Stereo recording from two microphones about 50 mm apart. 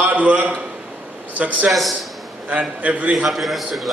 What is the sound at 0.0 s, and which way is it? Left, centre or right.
Speech, right.